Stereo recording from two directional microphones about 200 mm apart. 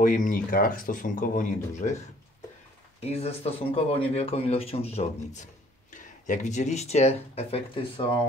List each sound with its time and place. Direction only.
0.0 s speech: 40° left (ahead or behind)
3.0 s speech: 30° left (ahead or behind)